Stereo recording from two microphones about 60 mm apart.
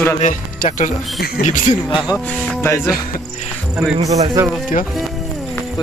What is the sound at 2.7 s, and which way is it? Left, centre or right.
Speech, left.